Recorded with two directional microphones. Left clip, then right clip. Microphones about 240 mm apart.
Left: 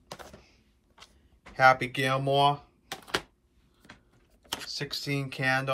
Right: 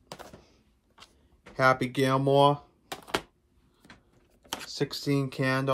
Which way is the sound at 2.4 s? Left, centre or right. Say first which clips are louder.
Right 2 dB; right.